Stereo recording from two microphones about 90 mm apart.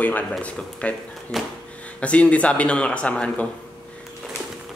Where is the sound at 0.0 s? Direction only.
15° left (ahead or behind).